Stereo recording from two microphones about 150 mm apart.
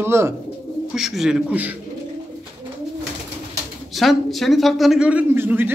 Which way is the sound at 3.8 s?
Centre (ahead or behind).